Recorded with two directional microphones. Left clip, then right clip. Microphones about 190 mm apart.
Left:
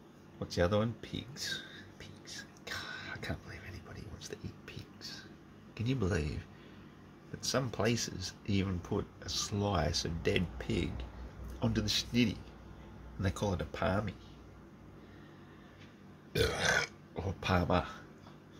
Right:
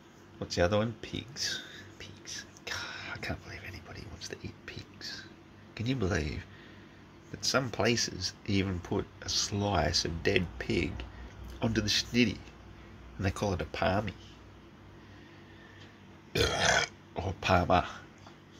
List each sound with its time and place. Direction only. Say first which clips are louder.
0.4 s whispering: right 3 dB; 10° left (ahead or behind)
5.8 s speech: right 3 dB; 10° left (ahead or behind)
16.3 s speech: right 4 dB; 5° left (ahead or behind)